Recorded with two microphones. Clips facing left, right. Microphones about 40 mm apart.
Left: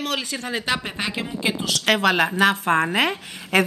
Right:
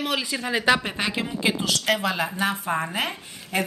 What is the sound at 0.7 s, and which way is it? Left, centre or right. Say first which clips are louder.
Speech: right 5 dB; right.